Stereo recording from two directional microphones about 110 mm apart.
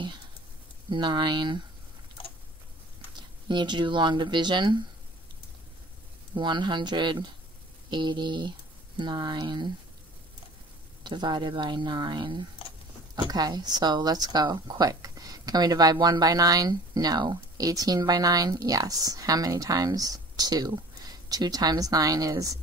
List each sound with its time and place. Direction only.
0.8 s speech: 45° right (ahead or behind)
3.4 s speech: 45° right (ahead or behind)
6.3 s speech: 45° right (ahead or behind)
11.1 s speech: 45° right (ahead or behind)